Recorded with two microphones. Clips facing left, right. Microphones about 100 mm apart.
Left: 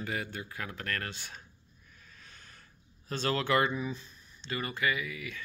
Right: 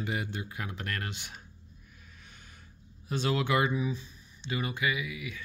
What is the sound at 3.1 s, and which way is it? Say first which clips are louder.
Speech: even; 10° right (ahead or behind).